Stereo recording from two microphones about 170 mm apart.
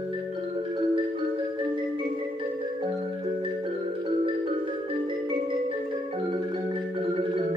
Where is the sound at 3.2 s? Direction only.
30° right (ahead or behind).